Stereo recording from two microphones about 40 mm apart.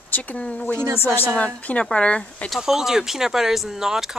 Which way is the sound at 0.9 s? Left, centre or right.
Left.